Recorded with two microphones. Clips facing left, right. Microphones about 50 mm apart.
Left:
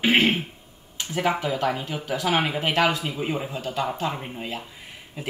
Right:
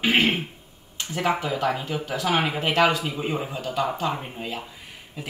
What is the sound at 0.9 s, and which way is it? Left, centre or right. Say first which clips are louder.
Speech: even; centre.